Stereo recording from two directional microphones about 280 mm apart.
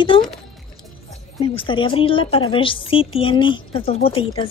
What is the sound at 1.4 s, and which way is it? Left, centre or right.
A woman's voice, centre.